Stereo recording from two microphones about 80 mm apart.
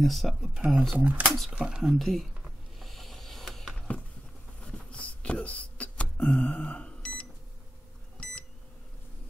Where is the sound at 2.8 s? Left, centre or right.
Centre.